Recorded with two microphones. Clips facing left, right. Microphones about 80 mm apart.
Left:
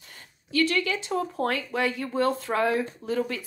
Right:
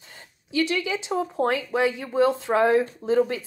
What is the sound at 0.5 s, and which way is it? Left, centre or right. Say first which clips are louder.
Speech: even; centre.